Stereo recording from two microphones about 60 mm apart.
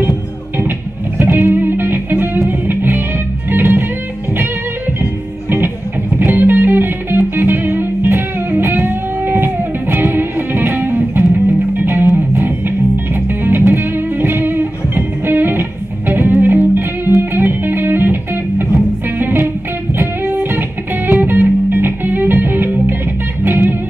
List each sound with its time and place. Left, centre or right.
0.6 s music: right
6.1 s music: right